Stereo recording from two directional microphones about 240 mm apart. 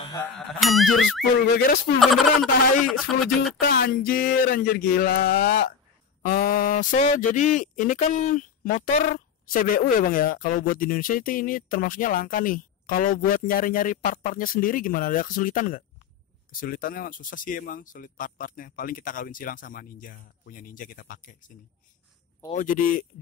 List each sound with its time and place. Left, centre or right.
0.2 s speech: centre
3.6 s speech: left
22.5 s speech: left